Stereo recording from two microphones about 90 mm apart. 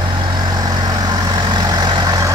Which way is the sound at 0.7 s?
45° right (ahead or behind).